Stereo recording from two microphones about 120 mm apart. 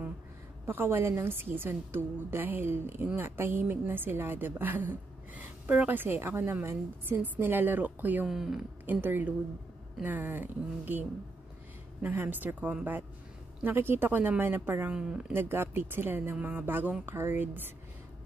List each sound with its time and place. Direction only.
0.7 s a woman's voice: 20° right (ahead or behind)
8.3 s speech: 5° right (ahead or behind)
9.0 s a woman's voice: 15° right (ahead or behind)
15.0 s speech: 5° right (ahead or behind)
15.3 s a woman's voice: 20° right (ahead or behind)